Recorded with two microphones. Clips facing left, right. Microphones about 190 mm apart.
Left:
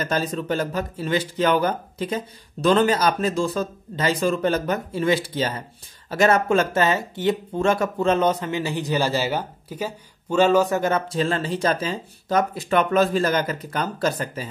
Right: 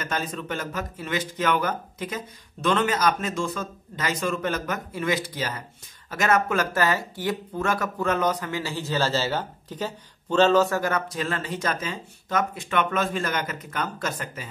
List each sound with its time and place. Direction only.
0.0 s speech: 35° left (ahead or behind)